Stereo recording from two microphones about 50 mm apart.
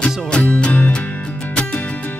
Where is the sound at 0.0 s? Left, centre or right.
Left.